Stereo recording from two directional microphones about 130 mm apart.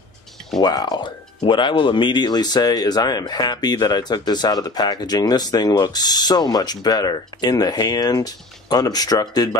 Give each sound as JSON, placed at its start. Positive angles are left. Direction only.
{"t": 0.6, "sound": "speech", "side_deg": 35}